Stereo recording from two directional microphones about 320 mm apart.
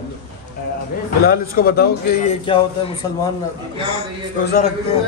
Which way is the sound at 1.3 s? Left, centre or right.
Left.